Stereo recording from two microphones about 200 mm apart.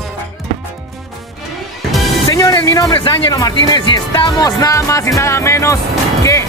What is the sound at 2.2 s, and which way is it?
Speech, 15° left (ahead or behind).